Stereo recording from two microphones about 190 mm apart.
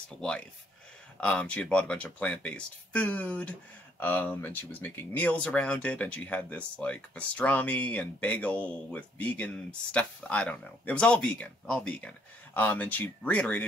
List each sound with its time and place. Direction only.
0.2 s speech: 5° left (ahead or behind)